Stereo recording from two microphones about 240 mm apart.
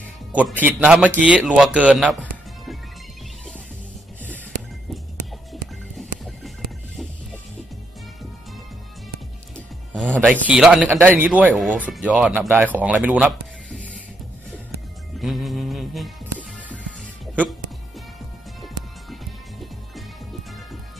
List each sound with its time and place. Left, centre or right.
0.3 s speech: centre
6.0 s music: centre
9.9 s a man's voice: centre
15.1 s music: centre